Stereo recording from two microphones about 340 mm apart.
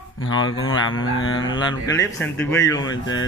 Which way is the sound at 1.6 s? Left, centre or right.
Centre.